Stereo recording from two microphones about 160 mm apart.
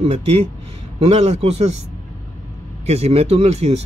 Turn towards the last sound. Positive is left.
turn(degrees=-40)  # may be behind; listen again after turning